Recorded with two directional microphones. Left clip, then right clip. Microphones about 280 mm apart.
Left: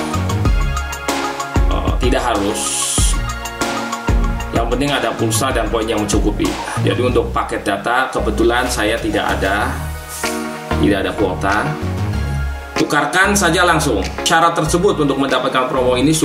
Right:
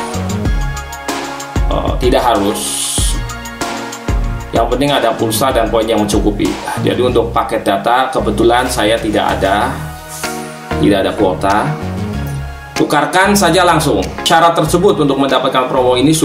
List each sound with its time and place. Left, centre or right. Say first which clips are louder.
2.0 s speech: right 6 dB; centre
4.6 s speech: right 5 dB; centre
10.9 s speech: right 6 dB; centre
12.8 s speech: right 3 dB; centre